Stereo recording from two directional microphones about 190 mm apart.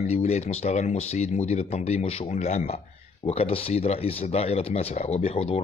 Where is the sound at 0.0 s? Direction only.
35° left (ahead or behind).